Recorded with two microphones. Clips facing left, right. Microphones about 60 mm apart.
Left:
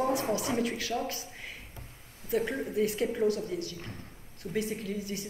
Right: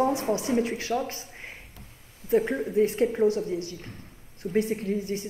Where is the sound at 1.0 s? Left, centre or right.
Right.